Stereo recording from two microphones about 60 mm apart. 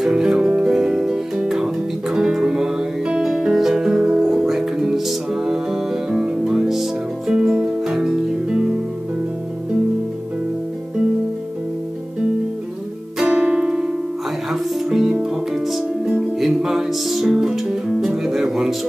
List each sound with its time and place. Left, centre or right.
0.0 s music: centre
13.2 s music: centre